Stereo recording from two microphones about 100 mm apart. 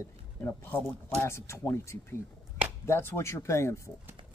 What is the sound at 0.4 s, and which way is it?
Speech, 25° left (ahead or behind).